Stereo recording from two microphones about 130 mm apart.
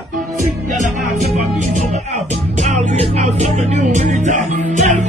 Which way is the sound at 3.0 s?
55° right (ahead or behind).